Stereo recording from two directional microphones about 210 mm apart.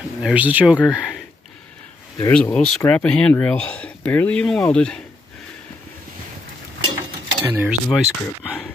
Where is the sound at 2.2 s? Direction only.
10° left (ahead or behind).